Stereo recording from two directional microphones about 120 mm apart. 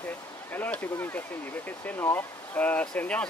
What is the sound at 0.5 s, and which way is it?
Speech, 15° left (ahead or behind).